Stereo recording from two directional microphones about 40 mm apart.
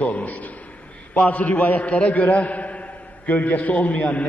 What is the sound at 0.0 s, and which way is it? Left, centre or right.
A man's voice, left.